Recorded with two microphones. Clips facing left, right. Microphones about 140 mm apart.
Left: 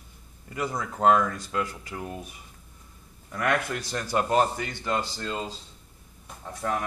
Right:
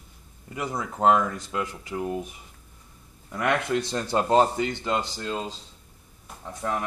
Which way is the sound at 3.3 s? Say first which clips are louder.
Right 2 dB; 20° right (ahead or behind).